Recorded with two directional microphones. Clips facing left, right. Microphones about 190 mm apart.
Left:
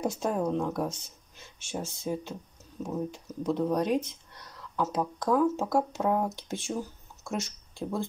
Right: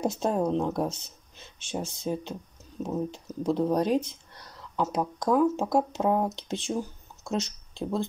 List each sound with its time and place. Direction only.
0.0 s speech: 25° right (ahead or behind)
4.7 s speech: 15° right (ahead or behind)